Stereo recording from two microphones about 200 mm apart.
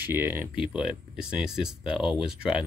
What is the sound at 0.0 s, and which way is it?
Speech, 10° right (ahead or behind).